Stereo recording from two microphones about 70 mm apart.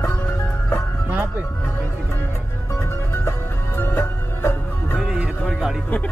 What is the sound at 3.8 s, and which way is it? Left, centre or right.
Music, left.